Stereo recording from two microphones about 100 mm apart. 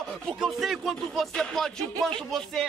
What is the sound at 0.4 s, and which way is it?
Speech, centre (ahead or behind).